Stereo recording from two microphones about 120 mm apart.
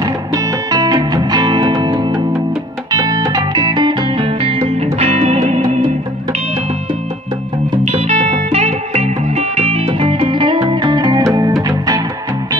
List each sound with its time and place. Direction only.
0.0 s music: 30° right (ahead or behind); by 5.7 s 65° right (ahead or behind)
7.8 s music: 65° right (ahead or behind); by 12.0 s 30° right (ahead or behind)